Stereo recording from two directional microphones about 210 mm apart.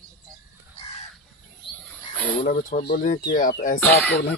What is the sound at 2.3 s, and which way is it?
Speech, 45° left (ahead or behind).